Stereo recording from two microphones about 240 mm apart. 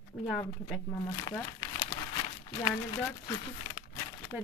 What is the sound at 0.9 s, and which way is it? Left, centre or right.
Speech, centre.